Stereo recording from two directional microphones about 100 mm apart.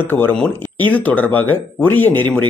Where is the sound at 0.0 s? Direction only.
20° left (ahead or behind).